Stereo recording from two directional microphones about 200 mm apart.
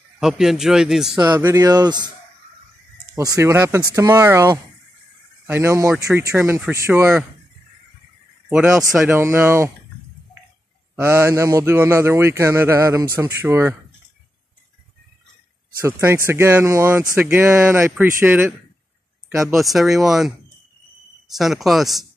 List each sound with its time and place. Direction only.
0.2 s a man's voice: centre (ahead or behind)
1.2 s speech: 20° right (ahead or behind)
3.2 s a man's voice: 15° right (ahead or behind)
8.5 s a man's voice: 10° right (ahead or behind)
11.0 s a man's voice: 10° right (ahead or behind)
15.8 s a man's voice: 10° right (ahead or behind)
19.5 s a man's voice: centre (ahead or behind)
21.4 s a man's voice: centre (ahead or behind)